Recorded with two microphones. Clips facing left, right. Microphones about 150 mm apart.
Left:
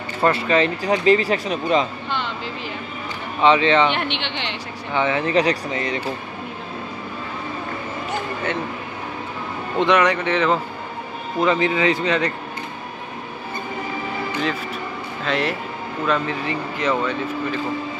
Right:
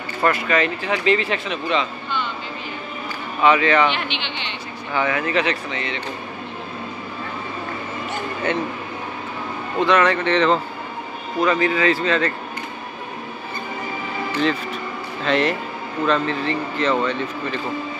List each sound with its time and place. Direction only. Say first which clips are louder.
0.2 s speech: left 2 dB; 30° left (ahead or behind)
2.0 s a sound: even; 80° left
3.4 s a man's voice: left 1 dB; 25° left (ahead or behind)
3.9 s speech: left 2 dB; 65° left (ahead or behind)
4.9 s speech: left 2 dB; 25° left (ahead or behind); by 5.9 s 40° left (ahead or behind)
9.8 s speech: even; 15° left (ahead or behind)
11.4 s a man's voice: even; 20° left (ahead or behind)
15.2 s speech: right 3 dB; centre (ahead or behind)